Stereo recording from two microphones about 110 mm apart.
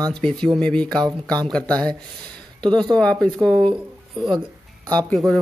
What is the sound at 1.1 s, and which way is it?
Speech, 35° right (ahead or behind).